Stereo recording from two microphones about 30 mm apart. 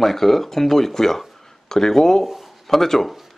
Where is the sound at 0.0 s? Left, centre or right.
Centre.